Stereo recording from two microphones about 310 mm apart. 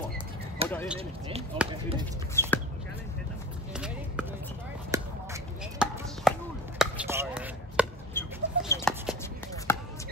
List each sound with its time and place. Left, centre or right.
0.6 s a sound: centre
1.7 s speech: centre
2.4 s speech: centre
3.7 s a sound: centre
8.1 s chicken: centre
9.7 s basketball bounce: centre